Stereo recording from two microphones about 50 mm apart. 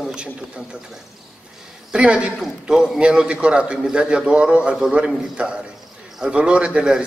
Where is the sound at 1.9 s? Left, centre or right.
Centre.